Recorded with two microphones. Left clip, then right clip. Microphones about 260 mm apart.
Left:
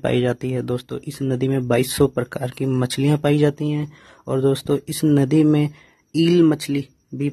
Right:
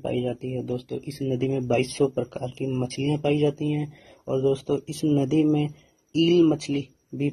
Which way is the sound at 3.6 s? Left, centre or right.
Centre.